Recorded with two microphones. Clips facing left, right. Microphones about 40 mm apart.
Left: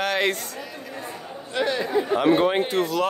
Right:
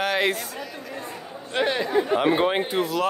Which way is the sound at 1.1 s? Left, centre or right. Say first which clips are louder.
Left 1 dB; centre.